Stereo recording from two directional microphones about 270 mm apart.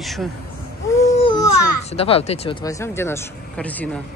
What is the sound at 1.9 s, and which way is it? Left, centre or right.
Speech, left.